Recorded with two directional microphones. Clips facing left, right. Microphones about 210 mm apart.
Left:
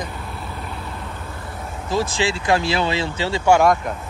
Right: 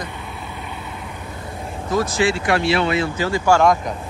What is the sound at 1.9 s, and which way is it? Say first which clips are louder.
Speech: right 3 dB; 25° left (ahead or behind).